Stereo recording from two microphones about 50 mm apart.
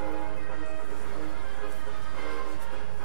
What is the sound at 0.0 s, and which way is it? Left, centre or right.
Music, centre.